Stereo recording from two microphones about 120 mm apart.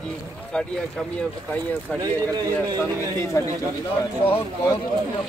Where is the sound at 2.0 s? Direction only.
35° right (ahead or behind).